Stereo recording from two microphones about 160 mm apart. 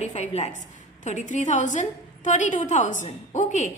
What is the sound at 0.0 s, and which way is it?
Speech, 45° left (ahead or behind).